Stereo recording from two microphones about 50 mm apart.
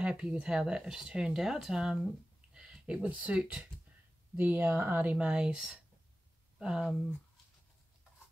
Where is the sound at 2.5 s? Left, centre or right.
Centre.